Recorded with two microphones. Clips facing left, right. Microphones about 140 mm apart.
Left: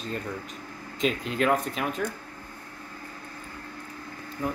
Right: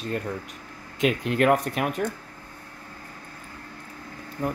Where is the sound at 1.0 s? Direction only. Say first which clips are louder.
Right 4 dB; 60° right (ahead or behind).